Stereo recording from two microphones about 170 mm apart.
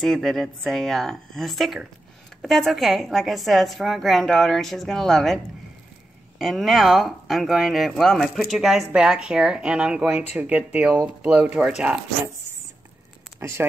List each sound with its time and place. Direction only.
0.0 s speech: centre (ahead or behind)
13.4 s speech: 15° right (ahead or behind)